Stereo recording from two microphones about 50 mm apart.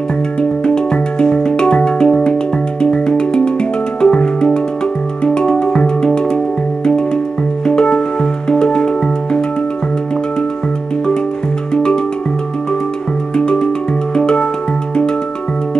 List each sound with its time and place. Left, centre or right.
0.4 s music: centre
11.7 s music: centre
14.1 s music: centre